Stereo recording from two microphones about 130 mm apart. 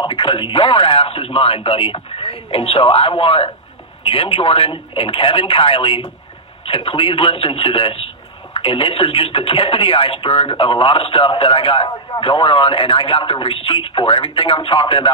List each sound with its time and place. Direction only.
0.0 s speech: 40° left (ahead or behind)